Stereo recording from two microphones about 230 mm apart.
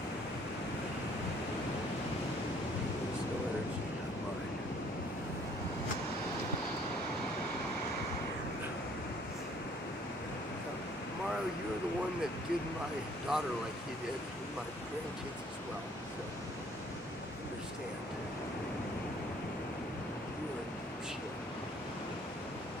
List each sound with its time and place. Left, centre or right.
13.3 s speech: centre